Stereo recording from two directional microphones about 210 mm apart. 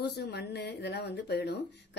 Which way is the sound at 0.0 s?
50° left (ahead or behind).